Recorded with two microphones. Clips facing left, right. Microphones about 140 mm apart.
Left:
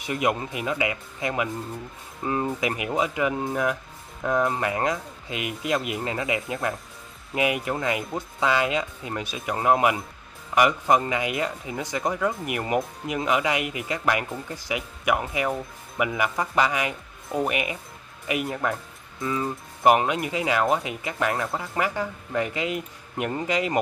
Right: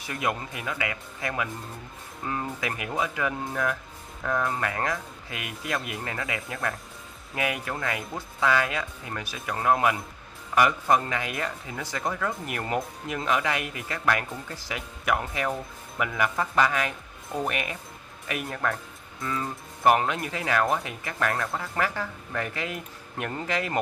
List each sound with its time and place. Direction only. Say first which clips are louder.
0.0 s speech: left 5 dB; 20° left (ahead or behind)